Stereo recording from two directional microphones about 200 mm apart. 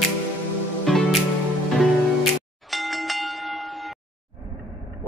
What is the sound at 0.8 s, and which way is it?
Music, centre (ahead or behind).